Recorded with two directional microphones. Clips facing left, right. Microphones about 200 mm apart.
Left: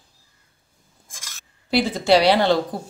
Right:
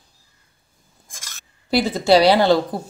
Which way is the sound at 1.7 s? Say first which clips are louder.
Right 2 dB; 40° right (ahead or behind).